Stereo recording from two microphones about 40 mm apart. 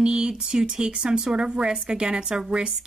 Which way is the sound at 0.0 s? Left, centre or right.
Right.